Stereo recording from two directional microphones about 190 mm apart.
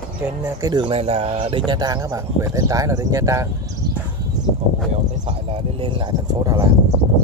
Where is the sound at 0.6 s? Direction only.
25° right (ahead or behind).